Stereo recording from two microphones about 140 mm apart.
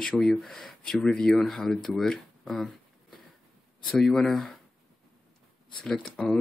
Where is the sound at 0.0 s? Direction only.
Centre (ahead or behind).